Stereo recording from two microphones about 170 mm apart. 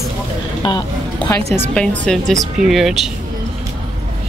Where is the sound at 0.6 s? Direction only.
25° left (ahead or behind).